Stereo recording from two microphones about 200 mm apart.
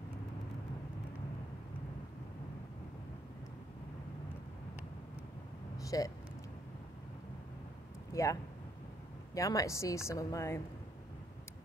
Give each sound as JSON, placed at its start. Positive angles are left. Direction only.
{"t": 5.9, "sound": "speech", "side_deg": 15}
{"t": 8.1, "sound": "a woman's voice", "side_deg": 15}